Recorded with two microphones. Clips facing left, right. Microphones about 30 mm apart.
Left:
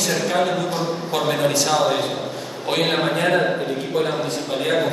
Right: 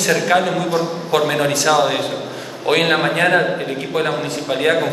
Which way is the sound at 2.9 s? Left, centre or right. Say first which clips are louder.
Right 4 dB; right.